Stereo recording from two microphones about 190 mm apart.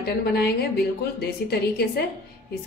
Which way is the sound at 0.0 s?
55° left (ahead or behind).